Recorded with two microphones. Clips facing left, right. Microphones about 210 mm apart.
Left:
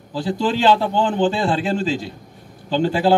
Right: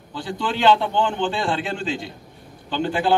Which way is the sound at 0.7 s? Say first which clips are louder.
Right 1 dB; 35° left (ahead or behind).